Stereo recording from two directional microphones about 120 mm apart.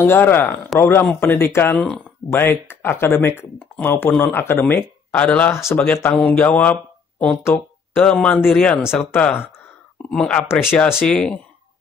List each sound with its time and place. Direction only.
0.0 s speech: 20° left (ahead or behind)
11.0 s speech: 5° left (ahead or behind)